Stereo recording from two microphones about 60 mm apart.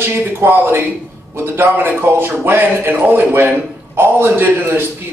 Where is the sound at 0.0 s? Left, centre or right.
Right.